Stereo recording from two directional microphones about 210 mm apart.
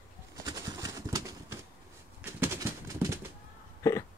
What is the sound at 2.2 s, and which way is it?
Pigeon, 10° right (ahead or behind).